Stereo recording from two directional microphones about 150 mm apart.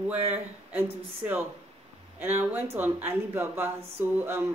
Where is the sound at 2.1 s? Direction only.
15° right (ahead or behind).